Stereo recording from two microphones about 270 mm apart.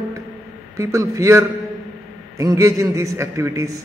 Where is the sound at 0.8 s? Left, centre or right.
Centre.